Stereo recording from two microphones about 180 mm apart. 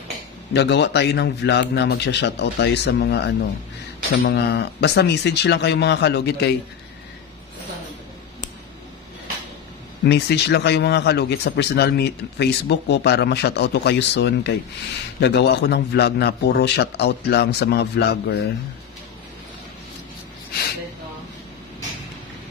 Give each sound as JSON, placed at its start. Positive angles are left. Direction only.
{"t": 0.5, "sound": "speech", "side_deg": 70}
{"t": 10.0, "sound": "a man's voice", "side_deg": 70}
{"t": 20.5, "sound": "speech", "side_deg": 60}